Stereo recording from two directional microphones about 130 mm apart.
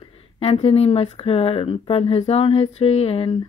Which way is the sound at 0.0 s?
45° left (ahead or behind).